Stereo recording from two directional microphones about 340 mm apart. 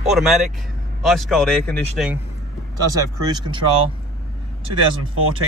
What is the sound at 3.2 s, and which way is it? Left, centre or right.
Speech, centre.